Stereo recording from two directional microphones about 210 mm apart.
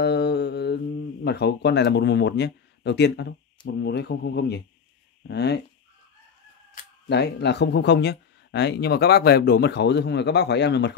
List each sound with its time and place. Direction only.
0.0 s speech: 55° left (ahead or behind)
7.1 s speech: 55° left (ahead or behind)